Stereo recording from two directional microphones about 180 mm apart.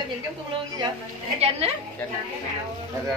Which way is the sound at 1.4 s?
35° right (ahead or behind).